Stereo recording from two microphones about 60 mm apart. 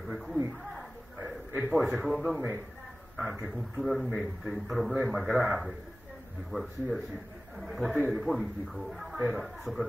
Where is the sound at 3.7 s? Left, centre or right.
Centre.